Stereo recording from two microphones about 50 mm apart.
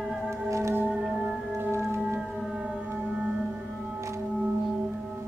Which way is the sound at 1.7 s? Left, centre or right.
Right.